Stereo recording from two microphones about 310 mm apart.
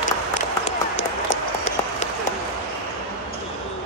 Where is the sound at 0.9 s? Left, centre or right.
Left.